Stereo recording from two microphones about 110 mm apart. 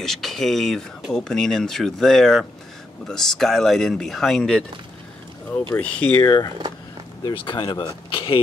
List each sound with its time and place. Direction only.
0.0 s speech: 5° left (ahead or behind)
5.7 s speech: 20° left (ahead or behind)
7.2 s speech: 50° left (ahead or behind)